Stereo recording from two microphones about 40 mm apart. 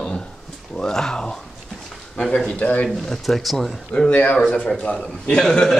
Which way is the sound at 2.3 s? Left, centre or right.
Left.